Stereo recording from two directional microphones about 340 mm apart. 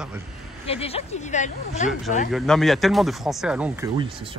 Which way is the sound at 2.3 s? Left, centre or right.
Centre.